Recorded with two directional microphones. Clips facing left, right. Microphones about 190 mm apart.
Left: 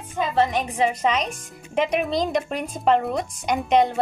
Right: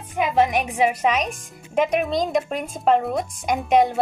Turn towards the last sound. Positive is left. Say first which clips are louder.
# right 1 dB
turn(degrees=-5)  # may be behind; listen again after turning